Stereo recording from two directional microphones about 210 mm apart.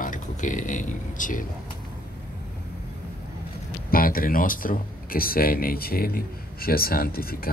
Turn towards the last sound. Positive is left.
turn(degrees=45)  # may be behind; listen again after turning